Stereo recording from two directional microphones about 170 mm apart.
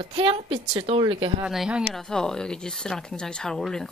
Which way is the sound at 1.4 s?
5° right (ahead or behind).